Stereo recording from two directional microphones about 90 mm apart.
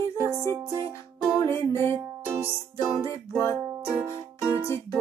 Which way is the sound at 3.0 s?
30° left (ahead or behind).